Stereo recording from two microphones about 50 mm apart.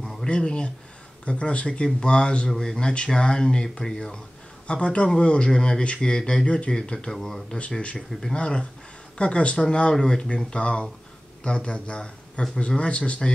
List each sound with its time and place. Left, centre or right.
0.0 s a sound: centre
0.3 s speech: centre
7.7 s speech: left
8.1 s speech: centre
8.4 s a man's voice: left